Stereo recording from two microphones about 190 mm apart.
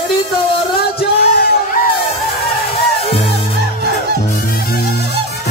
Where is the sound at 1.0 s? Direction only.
55° left (ahead or behind).